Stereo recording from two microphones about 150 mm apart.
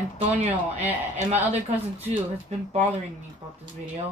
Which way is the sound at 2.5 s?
45° right (ahead or behind).